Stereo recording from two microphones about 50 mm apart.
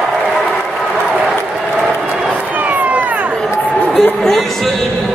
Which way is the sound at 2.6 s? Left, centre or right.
Right.